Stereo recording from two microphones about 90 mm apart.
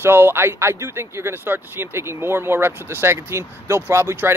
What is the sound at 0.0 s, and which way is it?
Speech, 25° right (ahead or behind).